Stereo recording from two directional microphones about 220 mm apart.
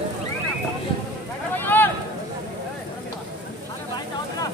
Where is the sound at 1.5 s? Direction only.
10° left (ahead or behind).